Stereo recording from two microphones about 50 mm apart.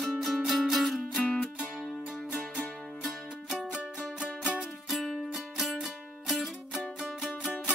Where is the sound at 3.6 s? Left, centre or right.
Centre.